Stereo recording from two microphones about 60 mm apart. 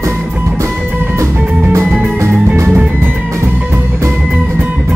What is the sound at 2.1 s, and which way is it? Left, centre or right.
Music, right.